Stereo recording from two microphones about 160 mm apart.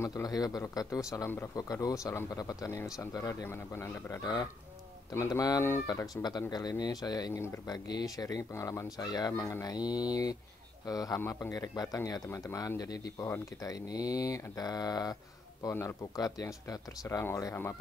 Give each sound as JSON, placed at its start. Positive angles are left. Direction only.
{"t": 0.0, "sound": "speech", "side_deg": 20}